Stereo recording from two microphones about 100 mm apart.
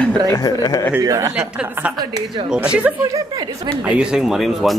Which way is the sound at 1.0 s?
35° right (ahead or behind).